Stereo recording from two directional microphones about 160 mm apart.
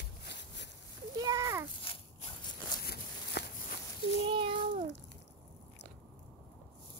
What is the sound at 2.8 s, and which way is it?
Walk, 85° left.